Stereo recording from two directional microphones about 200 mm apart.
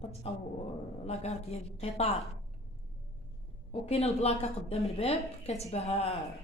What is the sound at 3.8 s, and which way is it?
A woman's voice, 30° left (ahead or behind).